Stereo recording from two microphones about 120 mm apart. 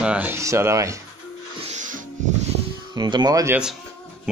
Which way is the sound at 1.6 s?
90° right.